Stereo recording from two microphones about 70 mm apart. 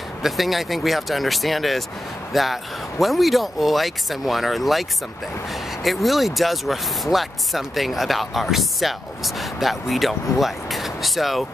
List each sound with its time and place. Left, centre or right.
0.2 s speech: centre